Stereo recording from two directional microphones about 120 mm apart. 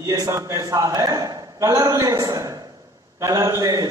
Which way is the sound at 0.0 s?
25° right (ahead or behind).